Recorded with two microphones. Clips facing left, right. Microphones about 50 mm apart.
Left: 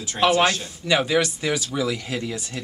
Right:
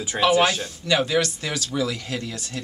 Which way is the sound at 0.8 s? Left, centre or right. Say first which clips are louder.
Left 1 dB; centre.